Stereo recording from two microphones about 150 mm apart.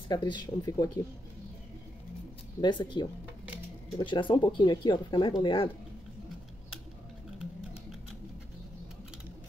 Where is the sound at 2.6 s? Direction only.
30° left (ahead or behind).